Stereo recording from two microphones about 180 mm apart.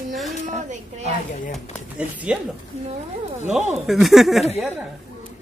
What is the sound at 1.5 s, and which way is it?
Speech, centre (ahead or behind).